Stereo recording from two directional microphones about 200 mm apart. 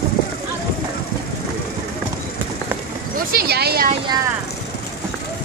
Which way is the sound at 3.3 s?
50° right (ahead or behind).